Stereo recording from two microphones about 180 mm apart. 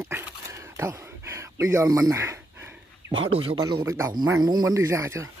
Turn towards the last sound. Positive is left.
turn(degrees=-15)  # may be behind; listen again after turning